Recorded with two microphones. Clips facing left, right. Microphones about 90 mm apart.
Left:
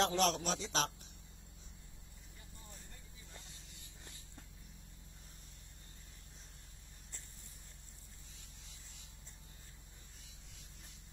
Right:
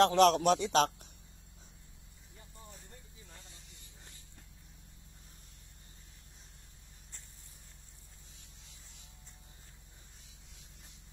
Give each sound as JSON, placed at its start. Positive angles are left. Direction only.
{"t": 0.0, "sound": "a man's voice", "side_deg": -65}